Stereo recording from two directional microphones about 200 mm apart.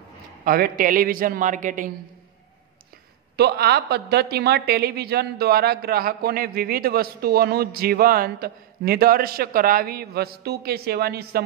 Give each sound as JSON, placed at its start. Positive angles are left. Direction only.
{"t": 0.5, "sound": "a woman's voice", "side_deg": -45}
{"t": 3.3, "sound": "a woman's voice", "side_deg": -50}